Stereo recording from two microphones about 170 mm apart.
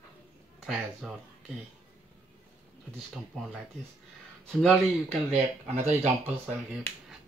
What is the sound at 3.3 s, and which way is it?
Speech, centre (ahead or behind).